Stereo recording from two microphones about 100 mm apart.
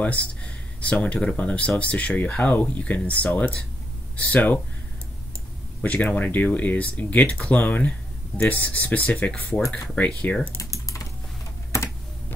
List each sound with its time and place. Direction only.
0.0 s speech: 15° left (ahead or behind)
5.8 s speech: 15° left (ahead or behind)
10.6 s typing: 30° left (ahead or behind)